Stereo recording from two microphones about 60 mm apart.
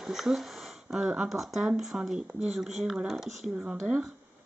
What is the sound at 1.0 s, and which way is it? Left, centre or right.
Speech, centre.